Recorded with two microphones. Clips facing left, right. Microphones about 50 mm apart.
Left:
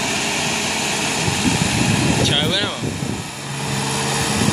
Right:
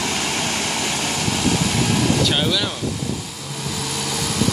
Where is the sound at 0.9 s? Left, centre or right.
Left.